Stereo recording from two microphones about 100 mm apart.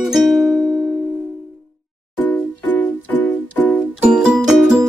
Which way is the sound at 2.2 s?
15° left (ahead or behind).